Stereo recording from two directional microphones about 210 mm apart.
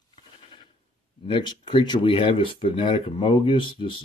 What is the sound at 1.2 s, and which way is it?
Speech, 25° left (ahead or behind).